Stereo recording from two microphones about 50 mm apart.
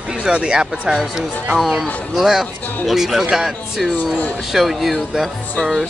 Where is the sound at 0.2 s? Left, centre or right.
Centre.